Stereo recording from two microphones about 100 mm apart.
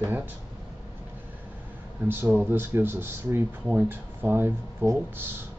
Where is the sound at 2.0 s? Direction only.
20° right (ahead or behind).